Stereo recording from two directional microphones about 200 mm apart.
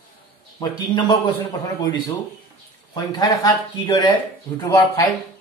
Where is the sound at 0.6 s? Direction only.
20° left (ahead or behind).